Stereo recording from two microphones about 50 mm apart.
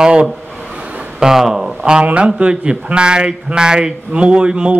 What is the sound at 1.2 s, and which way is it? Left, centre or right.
Speech, centre.